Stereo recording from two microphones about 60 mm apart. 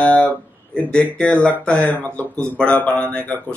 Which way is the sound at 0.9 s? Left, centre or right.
Centre.